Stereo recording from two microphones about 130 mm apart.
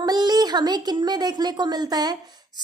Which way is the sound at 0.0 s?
30° right (ahead or behind).